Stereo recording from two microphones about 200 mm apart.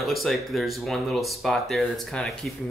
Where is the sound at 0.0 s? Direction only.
Centre (ahead or behind).